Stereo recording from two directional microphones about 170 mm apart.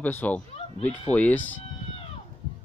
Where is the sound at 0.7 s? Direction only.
35° left (ahead or behind).